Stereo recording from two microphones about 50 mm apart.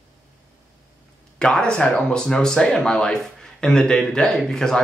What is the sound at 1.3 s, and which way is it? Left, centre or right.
A man's voice, centre.